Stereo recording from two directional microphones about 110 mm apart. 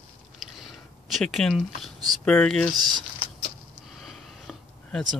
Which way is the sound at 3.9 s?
Centre (ahead or behind).